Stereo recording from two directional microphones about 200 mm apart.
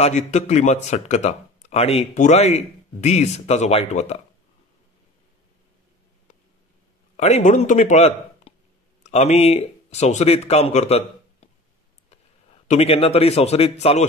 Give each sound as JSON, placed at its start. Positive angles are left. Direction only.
{"t": 0.0, "sound": "speech", "side_deg": 35}
{"t": 7.2, "sound": "speech", "side_deg": 35}
{"t": 12.6, "sound": "speech", "side_deg": 30}